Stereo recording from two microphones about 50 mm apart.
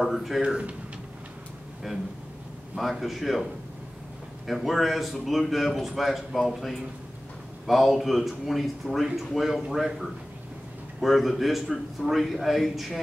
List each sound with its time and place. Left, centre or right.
0.0 s a man's voice: centre
0.4 s speech: centre
2.7 s a man's voice: centre
4.5 s a man's voice: centre